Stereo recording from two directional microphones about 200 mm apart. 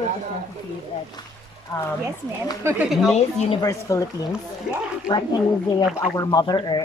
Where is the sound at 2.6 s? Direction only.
15° right (ahead or behind).